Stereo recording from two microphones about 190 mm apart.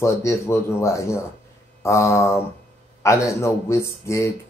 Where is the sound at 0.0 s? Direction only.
15° left (ahead or behind).